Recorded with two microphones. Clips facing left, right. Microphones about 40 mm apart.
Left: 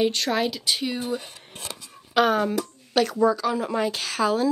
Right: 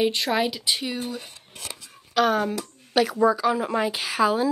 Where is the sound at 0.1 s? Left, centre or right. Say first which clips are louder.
Right 1 dB; centre.